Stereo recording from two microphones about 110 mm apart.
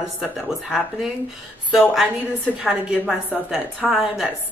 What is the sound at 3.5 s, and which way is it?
Speech, 5° right (ahead or behind).